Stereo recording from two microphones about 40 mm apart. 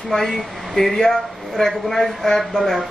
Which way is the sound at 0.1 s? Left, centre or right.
Centre.